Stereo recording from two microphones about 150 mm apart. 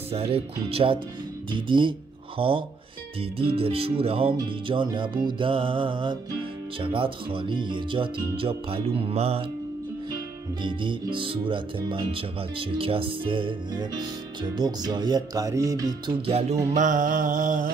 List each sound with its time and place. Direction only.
0.1 s speech: 40° right (ahead or behind)
10.6 s speech: 30° right (ahead or behind)
16.3 s music: 45° right (ahead or behind)
16.7 s music: 60° right (ahead or behind)